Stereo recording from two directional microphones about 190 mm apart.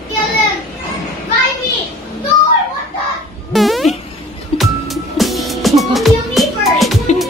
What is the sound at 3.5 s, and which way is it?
Music, centre (ahead or behind).